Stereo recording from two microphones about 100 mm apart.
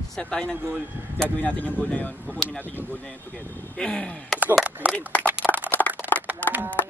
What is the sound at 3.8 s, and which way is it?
Speech, 10° left (ahead or behind).